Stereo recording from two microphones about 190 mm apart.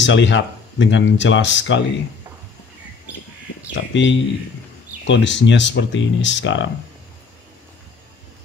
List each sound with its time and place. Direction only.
0.0 s speech: 70° left (ahead or behind)
3.7 s speech: 70° left (ahead or behind)